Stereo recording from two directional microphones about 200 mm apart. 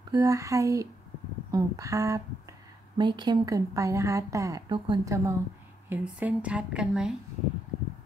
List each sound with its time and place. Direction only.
0.1 s a woman's voice: 15° right (ahead or behind)